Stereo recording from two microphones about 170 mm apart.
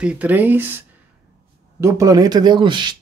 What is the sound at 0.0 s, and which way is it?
Speech, 5° right (ahead or behind).